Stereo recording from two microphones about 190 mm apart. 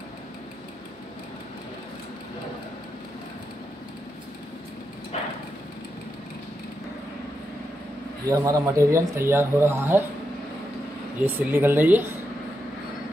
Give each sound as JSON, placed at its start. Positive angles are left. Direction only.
{"t": 5.1, "sound": "a sound", "side_deg": 30}
{"t": 8.3, "sound": "speech", "side_deg": -15}
{"t": 11.2, "sound": "speech", "side_deg": -10}